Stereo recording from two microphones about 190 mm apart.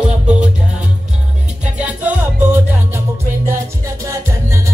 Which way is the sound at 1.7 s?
5° right (ahead or behind).